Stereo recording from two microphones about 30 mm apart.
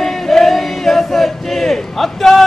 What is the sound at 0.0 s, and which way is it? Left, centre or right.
Choir, centre.